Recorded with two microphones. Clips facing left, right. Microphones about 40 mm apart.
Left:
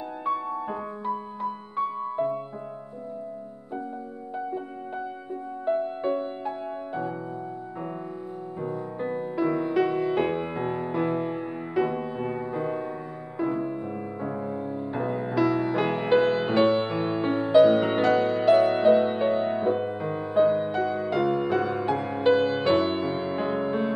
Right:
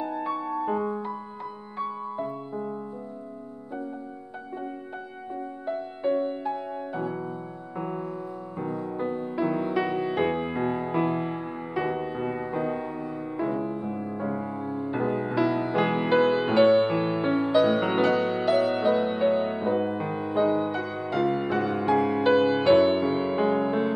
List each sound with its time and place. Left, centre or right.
0.2 s music: centre
2.0 s music: centre
6.0 s music: centre
8.7 s music: centre
14.9 s music: centre
18.5 s music: centre
20.0 s music: centre